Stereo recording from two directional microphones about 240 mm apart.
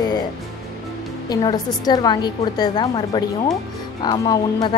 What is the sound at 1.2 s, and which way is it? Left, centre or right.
A woman's voice, centre.